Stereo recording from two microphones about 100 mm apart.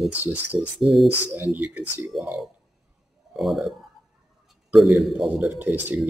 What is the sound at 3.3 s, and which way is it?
Speech, centre (ahead or behind).